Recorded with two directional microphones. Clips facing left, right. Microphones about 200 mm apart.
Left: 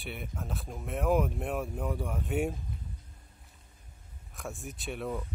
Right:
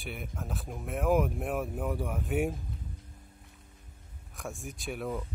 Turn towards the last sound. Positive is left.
turn(degrees=0)  # may be behind; listen again after turning